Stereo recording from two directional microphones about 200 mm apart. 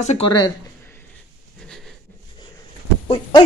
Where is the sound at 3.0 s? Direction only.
25° left (ahead or behind).